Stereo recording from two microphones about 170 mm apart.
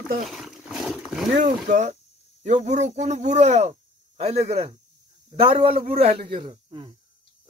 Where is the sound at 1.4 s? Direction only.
45° right (ahead or behind); by 7.0 s 30° right (ahead or behind).